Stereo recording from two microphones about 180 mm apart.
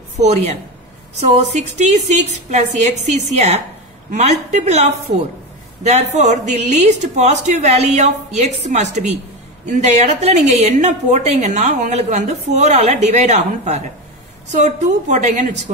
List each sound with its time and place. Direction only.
0.2 s a woman's voice: 40° right (ahead or behind)
6.1 s a woman's voice: 40° right (ahead or behind)